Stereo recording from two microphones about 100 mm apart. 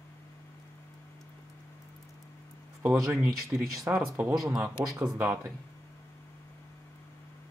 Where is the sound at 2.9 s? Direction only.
30° right (ahead or behind).